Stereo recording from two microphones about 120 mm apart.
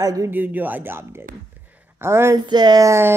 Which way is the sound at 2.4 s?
35° right (ahead or behind).